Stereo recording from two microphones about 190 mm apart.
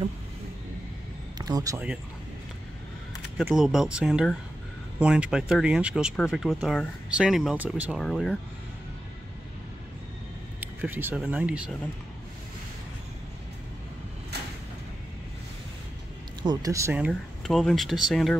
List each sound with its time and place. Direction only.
1.4 s speech: 20° right (ahead or behind)
3.5 s speech: centre (ahead or behind)
10.6 s speech: 10° right (ahead or behind)
16.4 s speech: 15° right (ahead or behind)
17.1 s speech: centre (ahead or behind)